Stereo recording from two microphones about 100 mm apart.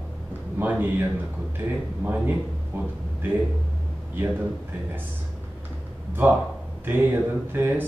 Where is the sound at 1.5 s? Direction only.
15° right (ahead or behind).